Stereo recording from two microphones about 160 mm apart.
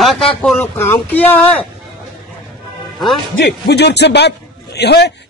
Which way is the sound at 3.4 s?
90° left.